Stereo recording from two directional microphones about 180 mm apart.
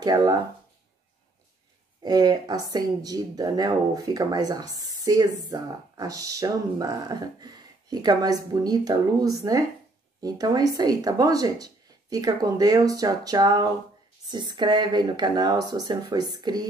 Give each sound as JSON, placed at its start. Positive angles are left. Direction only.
{"t": 0.0, "sound": "speech", "side_deg": -20}
{"t": 2.0, "sound": "speech", "side_deg": -20}